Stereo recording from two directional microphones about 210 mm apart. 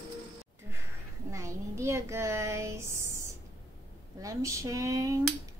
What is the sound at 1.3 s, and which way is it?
Child singing, 15° right (ahead or behind).